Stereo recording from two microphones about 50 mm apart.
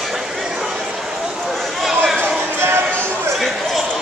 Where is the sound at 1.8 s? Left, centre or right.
Centre.